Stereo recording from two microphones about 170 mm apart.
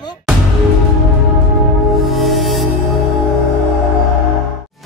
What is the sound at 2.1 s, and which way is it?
Music, centre (ahead or behind).